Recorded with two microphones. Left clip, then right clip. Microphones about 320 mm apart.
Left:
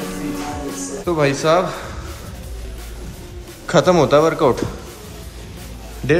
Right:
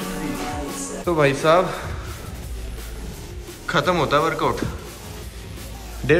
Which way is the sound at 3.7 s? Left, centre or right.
Centre.